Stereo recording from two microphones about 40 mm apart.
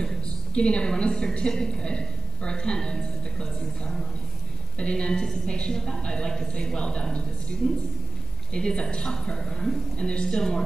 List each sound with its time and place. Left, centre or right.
0.6 s a woman's voice: left
7.6 s a man's voice: centre
8.5 s a woman's voice: left
9.9 s a woman's voice: left